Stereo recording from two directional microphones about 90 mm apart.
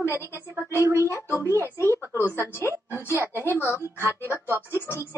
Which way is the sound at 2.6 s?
25° right (ahead or behind).